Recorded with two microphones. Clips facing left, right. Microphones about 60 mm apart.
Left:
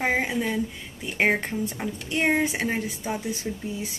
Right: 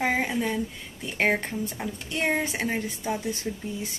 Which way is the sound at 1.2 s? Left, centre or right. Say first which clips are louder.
Left 2 dB; centre.